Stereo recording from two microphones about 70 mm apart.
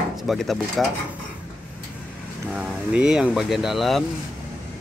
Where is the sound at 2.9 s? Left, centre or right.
Centre.